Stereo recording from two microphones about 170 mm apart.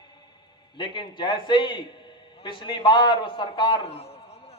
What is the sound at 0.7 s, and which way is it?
A man's voice, 30° left (ahead or behind).